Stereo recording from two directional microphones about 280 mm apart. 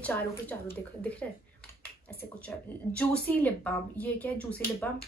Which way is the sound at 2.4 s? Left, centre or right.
Centre.